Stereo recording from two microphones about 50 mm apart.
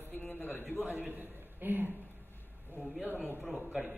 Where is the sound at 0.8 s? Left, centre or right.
Right.